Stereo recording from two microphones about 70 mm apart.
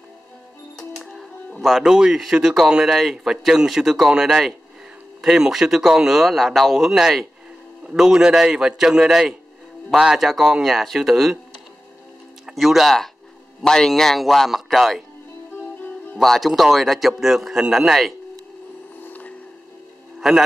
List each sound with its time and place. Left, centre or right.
0.7 s music: centre
1.6 s a man's voice: centre
12.4 s a man's voice: centre
16.2 s a man's voice: centre
19.0 s squish: left
20.2 s music: centre